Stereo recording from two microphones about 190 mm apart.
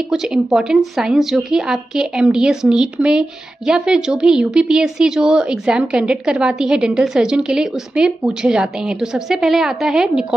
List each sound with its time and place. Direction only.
0.1 s speech: 5° right (ahead or behind)